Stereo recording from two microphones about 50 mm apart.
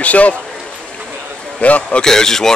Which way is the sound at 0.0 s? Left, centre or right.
Left.